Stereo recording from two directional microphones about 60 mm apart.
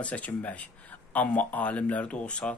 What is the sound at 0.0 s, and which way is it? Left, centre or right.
Speech, left.